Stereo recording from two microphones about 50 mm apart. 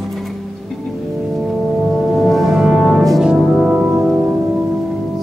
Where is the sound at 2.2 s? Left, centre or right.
Centre.